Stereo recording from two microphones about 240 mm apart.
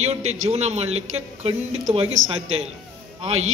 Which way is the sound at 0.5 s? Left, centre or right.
Right.